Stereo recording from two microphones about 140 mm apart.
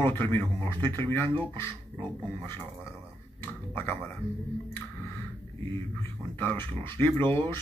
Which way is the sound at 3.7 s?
20° left (ahead or behind).